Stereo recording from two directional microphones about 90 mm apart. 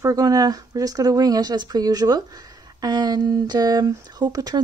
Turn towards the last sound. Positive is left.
turn(degrees=-45)  # may be behind; listen again after turning